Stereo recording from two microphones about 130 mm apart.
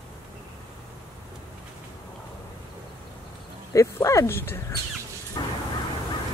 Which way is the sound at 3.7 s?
25° left (ahead or behind).